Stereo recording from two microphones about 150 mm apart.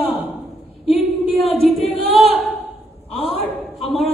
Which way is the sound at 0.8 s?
Centre (ahead or behind).